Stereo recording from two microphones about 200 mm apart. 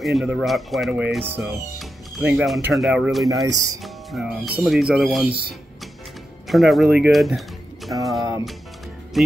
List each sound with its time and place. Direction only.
0.0 s speech: centre (ahead or behind)
3.4 s speech: 15° right (ahead or behind)
3.8 s speech: centre (ahead or behind)
6.4 s speech: centre (ahead or behind)
8.0 s music: centre (ahead or behind)